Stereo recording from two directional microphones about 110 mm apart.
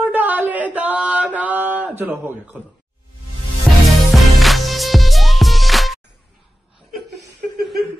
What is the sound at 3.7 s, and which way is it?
Music, centre (ahead or behind).